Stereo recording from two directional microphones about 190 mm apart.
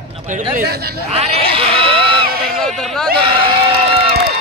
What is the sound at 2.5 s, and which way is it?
Speech, centre (ahead or behind).